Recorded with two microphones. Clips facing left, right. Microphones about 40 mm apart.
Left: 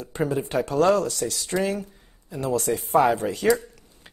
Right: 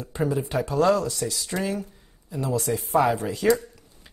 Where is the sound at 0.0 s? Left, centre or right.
Left.